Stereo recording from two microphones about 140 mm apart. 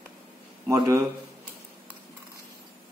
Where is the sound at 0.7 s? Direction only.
20° right (ahead or behind).